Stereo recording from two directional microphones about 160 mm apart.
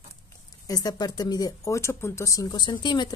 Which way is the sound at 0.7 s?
25° left (ahead or behind).